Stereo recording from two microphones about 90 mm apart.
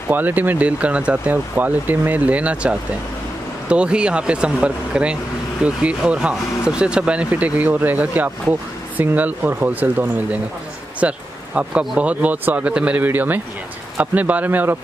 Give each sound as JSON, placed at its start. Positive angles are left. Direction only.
{"t": 0.1, "sound": "speech", "side_deg": -20}
{"t": 11.0, "sound": "a sound", "side_deg": -15}
{"t": 12.0, "sound": "speech", "side_deg": -15}